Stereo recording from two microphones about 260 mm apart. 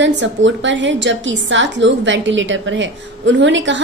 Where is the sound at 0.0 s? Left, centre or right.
Right.